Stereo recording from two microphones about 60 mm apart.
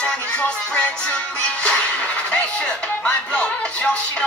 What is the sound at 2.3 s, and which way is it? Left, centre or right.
Music, centre.